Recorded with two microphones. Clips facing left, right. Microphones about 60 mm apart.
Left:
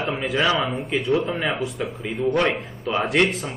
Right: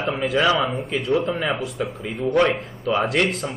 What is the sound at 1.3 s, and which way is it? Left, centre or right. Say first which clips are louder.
Speech: right 1 dB; centre.